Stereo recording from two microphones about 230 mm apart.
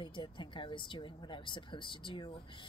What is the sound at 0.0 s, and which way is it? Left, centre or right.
Speech, centre.